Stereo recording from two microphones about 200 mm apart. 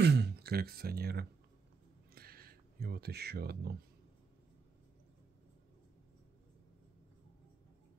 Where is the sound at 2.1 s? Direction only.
50° right (ahead or behind).